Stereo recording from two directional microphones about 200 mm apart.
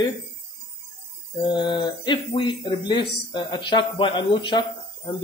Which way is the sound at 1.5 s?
20° left (ahead or behind).